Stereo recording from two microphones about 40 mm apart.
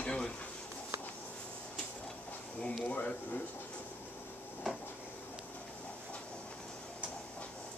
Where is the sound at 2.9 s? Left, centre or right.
Left.